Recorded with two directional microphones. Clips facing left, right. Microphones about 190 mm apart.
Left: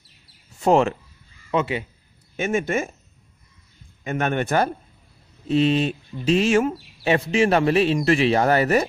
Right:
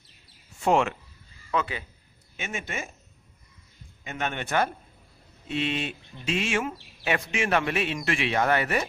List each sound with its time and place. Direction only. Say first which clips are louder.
0.6 s speech: left 5 dB; 35° left (ahead or behind)
1.5 s a man's voice: left 6 dB; 25° left (ahead or behind)
2.3 s a man's voice: left 12 dB; 45° left (ahead or behind)
4.0 s a man's voice: left 9 dB; 50° left (ahead or behind)